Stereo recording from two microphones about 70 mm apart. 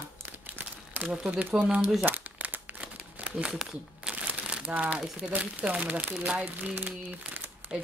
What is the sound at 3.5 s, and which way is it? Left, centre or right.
Speech, centre.